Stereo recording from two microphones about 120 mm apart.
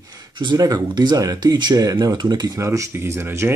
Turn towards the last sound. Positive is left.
turn(degrees=-20)  # may be behind; listen again after turning